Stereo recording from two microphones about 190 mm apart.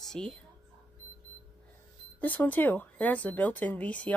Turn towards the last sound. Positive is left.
turn(degrees=5)  # may be behind; listen again after turning